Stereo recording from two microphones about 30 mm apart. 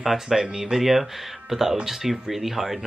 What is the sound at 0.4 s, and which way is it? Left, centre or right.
Speech, right.